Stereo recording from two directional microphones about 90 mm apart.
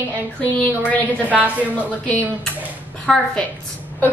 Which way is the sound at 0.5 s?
15° left (ahead or behind).